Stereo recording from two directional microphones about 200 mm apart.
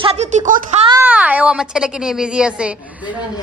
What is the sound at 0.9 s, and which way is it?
Speech, 10° right (ahead or behind).